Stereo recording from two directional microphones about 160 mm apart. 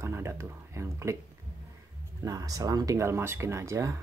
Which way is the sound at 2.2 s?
20° right (ahead or behind).